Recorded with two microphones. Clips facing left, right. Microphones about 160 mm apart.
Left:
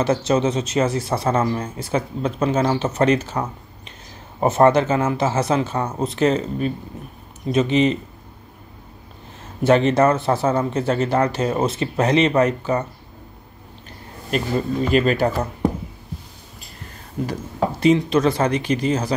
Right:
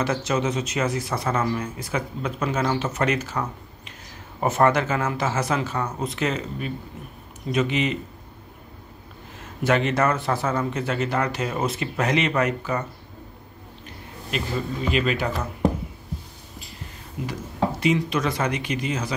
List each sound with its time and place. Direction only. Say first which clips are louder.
0.0 s speech: left 5 dB; 30° left (ahead or behind)
9.6 s speech: left 6 dB; 30° left (ahead or behind)
14.3 s speech: left 6 dB; 45° left (ahead or behind)
17.3 s speech: left 1 dB; 35° left (ahead or behind)